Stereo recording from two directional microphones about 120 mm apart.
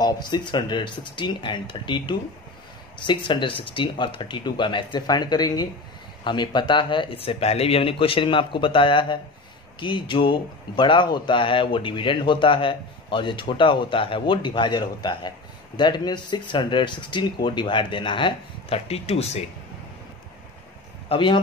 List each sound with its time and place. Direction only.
0.0 s a man's voice: 35° left (ahead or behind); by 19.4 s 60° left (ahead or behind)
21.1 s speech: 45° left (ahead or behind)